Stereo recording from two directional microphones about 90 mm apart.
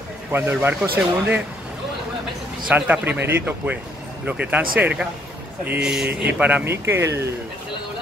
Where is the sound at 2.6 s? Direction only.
15° right (ahead or behind).